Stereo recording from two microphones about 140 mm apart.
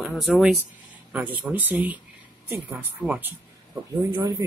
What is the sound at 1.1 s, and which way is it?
Speech, 15° right (ahead or behind).